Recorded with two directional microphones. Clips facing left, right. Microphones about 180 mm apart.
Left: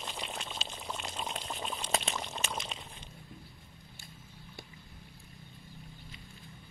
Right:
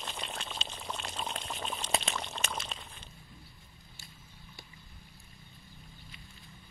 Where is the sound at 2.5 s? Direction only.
15° left (ahead or behind).